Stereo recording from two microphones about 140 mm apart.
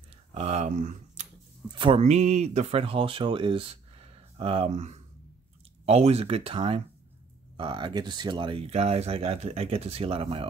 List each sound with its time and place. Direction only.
0.3 s speech: 50° right (ahead or behind)
1.7 s speech: 35° right (ahead or behind)
2.0 s speech: 55° right (ahead or behind)